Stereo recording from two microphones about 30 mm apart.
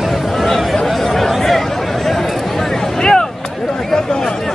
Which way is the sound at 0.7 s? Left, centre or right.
Centre.